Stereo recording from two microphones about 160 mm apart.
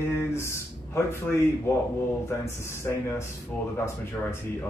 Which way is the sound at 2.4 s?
15° left (ahead or behind).